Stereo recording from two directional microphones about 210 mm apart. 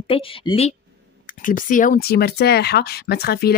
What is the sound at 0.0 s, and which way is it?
Speech, 25° left (ahead or behind).